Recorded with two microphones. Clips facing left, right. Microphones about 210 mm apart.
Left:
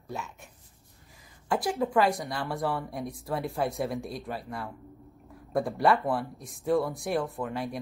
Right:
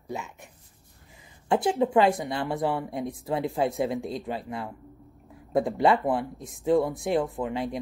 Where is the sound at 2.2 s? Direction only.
20° right (ahead or behind).